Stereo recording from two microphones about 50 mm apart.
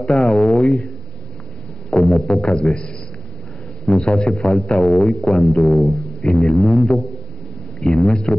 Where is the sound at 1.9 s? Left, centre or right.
Left.